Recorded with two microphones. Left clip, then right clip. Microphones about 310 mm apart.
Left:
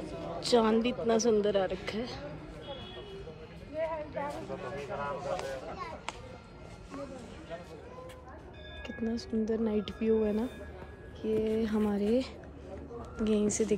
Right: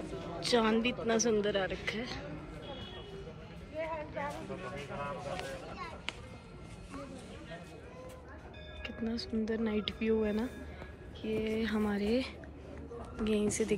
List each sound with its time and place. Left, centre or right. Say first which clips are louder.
0.4 s speech: left 3 dB; centre
3.8 s vehicle: left 3 dB; left
8.8 s speech: left 2 dB; centre